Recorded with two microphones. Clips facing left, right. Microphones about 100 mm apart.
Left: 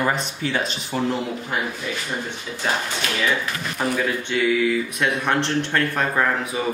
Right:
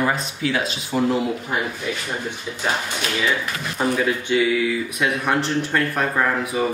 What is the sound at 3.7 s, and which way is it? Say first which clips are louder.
Speech: right 3 dB; 10° right (ahead or behind).